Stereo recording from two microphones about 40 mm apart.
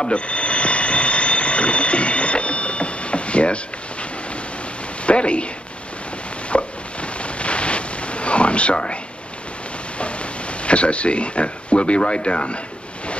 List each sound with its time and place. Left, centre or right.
0.0 s alarm clock: left
5.0 s speech: left
6.5 s a sound: left
9.9 s speech: left